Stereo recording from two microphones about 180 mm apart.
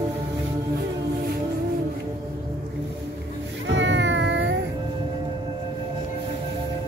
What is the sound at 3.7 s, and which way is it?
Cat, 85° right.